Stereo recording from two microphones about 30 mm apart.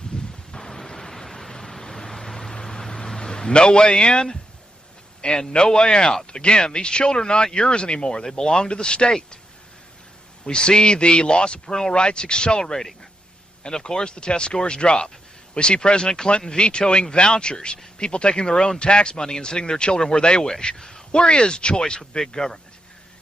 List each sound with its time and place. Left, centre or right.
0.1 s a sound: left
0.6 s a sound: left
1.1 s vehicle: centre
2.6 s a sound: centre
5.2 s speech: left
8.6 s speech: left
10.4 s speech: left
11.6 s speech: centre
11.9 s speech: left